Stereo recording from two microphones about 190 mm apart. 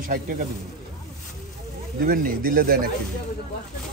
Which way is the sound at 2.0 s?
50° right (ahead or behind).